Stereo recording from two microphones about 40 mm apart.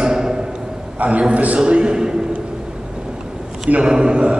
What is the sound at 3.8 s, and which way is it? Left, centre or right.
Speech, centre.